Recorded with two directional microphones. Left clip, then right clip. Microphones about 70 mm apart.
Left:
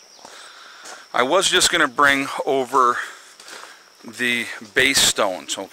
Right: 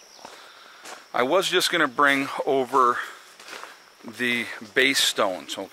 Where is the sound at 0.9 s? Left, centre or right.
Left.